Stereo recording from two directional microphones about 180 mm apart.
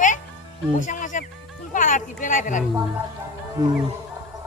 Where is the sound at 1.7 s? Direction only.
45° left (ahead or behind).